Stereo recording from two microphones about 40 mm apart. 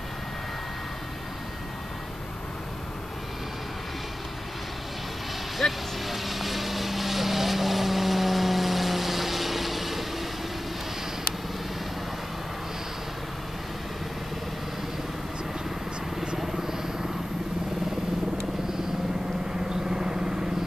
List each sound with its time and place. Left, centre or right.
5.6 s vehicle: centre
16.3 s vehicle: centre
19.9 s vehicle: centre